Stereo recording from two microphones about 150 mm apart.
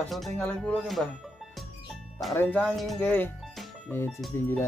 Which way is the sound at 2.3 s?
10° left (ahead or behind).